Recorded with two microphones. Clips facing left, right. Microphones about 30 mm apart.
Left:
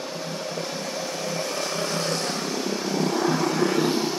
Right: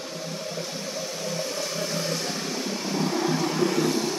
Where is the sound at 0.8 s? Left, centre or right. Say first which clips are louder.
Left 2 dB; left.